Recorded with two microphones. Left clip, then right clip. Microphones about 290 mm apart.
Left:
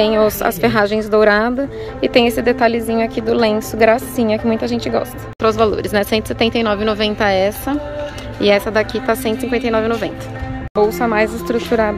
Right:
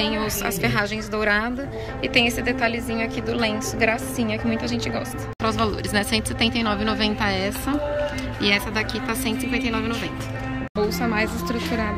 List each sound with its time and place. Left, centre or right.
0.0 s a woman's voice: centre